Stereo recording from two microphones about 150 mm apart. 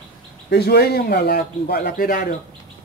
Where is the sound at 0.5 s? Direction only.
90° left.